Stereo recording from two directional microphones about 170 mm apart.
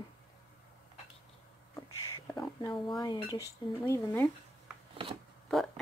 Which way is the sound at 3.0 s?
25° left (ahead or behind).